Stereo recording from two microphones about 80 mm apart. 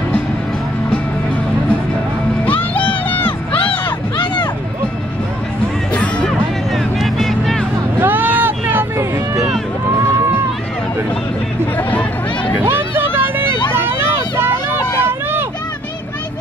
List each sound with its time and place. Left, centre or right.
2.8 s crowd: left
6.2 s music: centre
8.0 s vehicle: right
11.9 s music: centre
12.5 s vehicle: right